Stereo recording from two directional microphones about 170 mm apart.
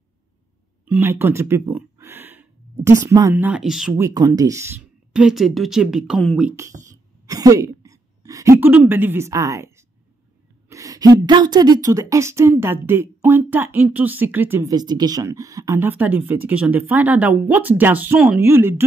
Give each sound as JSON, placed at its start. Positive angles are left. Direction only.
{"t": 0.8, "sound": "a sound", "side_deg": -10}
{"t": 3.1, "sound": "speech", "side_deg": -15}
{"t": 4.0, "sound": "speech", "side_deg": -20}
{"t": 6.5, "sound": "a woman's voice", "side_deg": -15}